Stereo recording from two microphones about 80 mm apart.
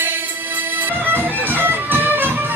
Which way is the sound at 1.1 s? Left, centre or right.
Right.